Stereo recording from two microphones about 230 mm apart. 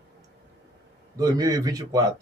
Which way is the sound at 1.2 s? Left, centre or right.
Centre.